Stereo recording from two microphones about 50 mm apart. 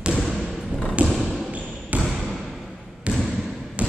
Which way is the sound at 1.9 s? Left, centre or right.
Right.